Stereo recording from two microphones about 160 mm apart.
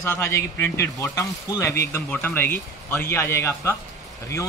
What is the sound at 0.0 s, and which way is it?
Speech, 15° left (ahead or behind).